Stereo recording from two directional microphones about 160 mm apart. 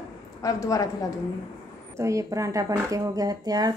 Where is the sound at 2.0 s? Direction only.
20° right (ahead or behind).